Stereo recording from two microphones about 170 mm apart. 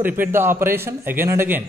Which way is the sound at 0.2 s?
15° right (ahead or behind).